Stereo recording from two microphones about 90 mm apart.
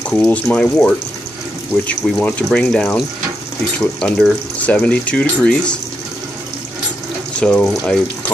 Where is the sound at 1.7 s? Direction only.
25° left (ahead or behind).